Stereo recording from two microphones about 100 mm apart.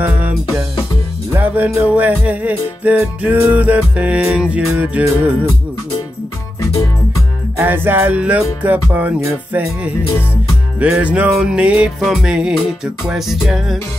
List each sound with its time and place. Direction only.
0.0 s music: 15° right (ahead or behind)
1.3 s music: 15° right (ahead or behind)
7.5 s music: 20° right (ahead or behind); by 13.7 s 5° right (ahead or behind)